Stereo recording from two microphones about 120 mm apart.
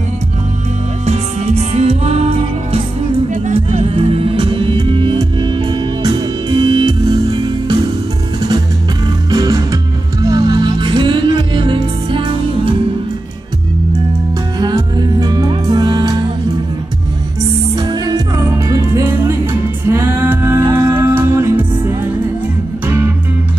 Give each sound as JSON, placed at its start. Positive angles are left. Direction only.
{"t": 1.0, "sound": "music", "side_deg": -65}
{"t": 3.8, "sound": "music", "side_deg": -50}
{"t": 14.6, "sound": "music", "side_deg": -35}
{"t": 17.7, "sound": "music", "side_deg": -35}